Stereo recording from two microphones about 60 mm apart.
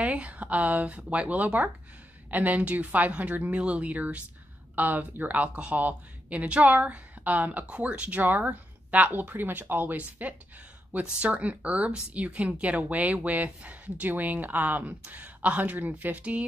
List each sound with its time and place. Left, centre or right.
0.0 s speech: right